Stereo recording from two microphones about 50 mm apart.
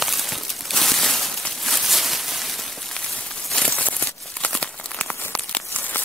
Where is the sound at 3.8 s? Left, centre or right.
Left.